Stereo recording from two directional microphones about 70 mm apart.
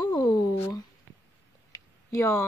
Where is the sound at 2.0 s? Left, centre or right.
Left.